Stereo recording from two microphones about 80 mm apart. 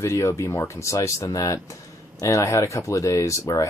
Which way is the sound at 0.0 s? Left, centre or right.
Left.